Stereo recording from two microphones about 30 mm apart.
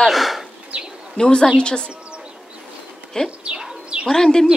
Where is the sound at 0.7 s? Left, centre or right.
Right.